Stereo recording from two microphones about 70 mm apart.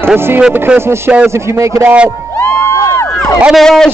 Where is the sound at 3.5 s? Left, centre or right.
Centre.